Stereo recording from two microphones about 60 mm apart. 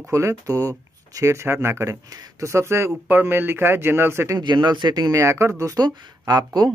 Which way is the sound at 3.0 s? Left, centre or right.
Right.